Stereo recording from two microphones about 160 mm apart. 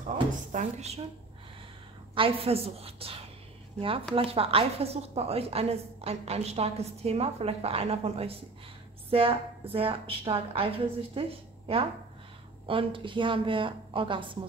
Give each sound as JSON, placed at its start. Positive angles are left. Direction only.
{"t": 0.5, "sound": "a woman's voice", "side_deg": -45}
{"t": 2.1, "sound": "speech", "side_deg": -35}